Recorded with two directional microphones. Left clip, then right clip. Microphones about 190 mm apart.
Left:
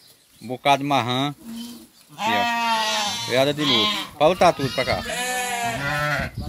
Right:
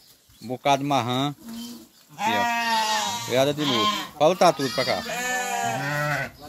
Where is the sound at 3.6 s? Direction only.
45° left (ahead or behind).